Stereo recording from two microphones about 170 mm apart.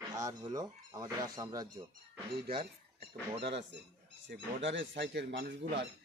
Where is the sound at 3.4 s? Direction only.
90° right.